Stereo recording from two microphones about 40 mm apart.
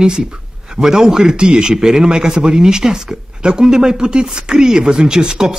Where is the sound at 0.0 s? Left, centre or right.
Centre.